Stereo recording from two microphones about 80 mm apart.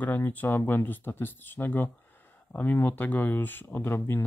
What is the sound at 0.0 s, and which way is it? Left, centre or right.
Speech, left.